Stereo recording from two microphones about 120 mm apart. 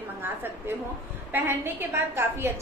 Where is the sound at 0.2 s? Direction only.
15° right (ahead or behind).